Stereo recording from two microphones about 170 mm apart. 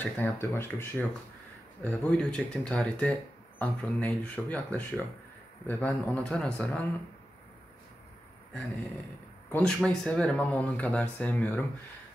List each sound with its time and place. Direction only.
0.0 s speech: 10° left (ahead or behind)
9.5 s speech: 5° left (ahead or behind)